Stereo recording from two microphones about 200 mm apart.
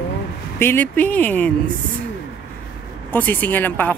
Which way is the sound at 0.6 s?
10° left (ahead or behind).